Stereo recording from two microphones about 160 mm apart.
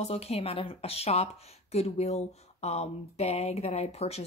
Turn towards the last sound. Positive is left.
turn(degrees=40)  # may be behind; listen again after turning